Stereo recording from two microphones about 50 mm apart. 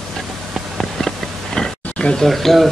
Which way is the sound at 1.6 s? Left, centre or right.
Centre.